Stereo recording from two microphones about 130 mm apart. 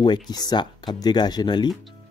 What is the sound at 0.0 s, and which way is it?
Speech, 30° left (ahead or behind).